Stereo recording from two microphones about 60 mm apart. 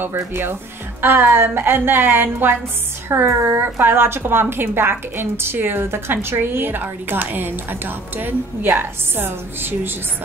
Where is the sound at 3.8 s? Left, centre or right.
Right.